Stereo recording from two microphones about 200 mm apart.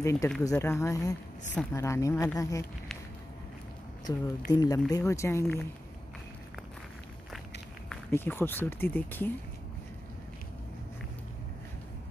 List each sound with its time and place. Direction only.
0.0 s speech: 15° left (ahead or behind)
4.1 s speech: 20° left (ahead or behind)
7.9 s speech: 10° left (ahead or behind)